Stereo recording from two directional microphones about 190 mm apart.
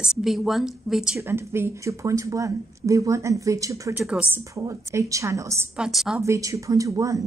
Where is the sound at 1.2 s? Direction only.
15° right (ahead or behind).